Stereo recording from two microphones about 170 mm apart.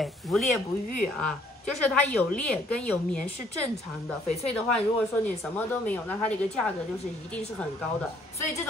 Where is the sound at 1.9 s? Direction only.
5° left (ahead or behind).